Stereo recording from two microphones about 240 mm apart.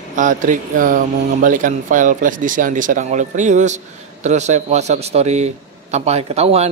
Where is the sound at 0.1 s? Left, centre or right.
Right.